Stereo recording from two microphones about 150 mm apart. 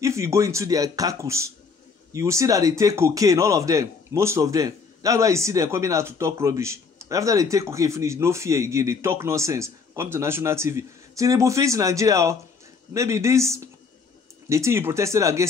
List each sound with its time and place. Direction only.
0.0 s a man's voice: 20° right (ahead or behind)